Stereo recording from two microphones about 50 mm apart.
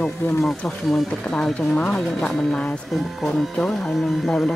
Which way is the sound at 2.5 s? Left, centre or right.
Centre.